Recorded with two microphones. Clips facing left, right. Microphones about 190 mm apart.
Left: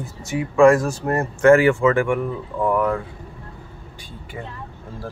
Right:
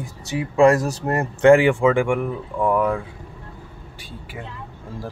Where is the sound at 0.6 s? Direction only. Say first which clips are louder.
Left 2 dB; 40° right (ahead or behind).